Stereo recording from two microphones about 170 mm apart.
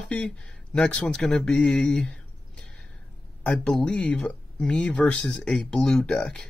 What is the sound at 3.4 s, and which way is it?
Speech, 5° left (ahead or behind).